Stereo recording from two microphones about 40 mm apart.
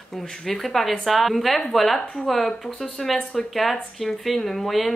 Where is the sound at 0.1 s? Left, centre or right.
Centre.